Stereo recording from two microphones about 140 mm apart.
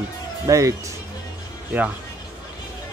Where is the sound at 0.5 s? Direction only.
25° right (ahead or behind).